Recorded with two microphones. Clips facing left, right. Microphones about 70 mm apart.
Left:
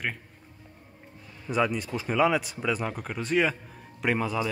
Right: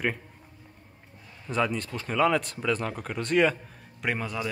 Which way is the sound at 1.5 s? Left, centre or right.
Centre.